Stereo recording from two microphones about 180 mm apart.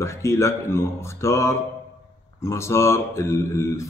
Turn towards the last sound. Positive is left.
turn(degrees=15)  # may be behind; listen again after turning